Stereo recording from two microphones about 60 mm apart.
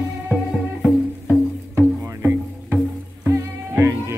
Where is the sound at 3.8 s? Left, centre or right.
Right.